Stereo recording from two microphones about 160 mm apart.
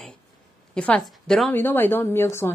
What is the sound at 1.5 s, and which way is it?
Speech, 10° left (ahead or behind).